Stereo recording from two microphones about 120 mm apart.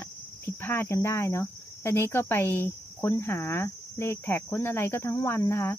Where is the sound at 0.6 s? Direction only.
20° left (ahead or behind).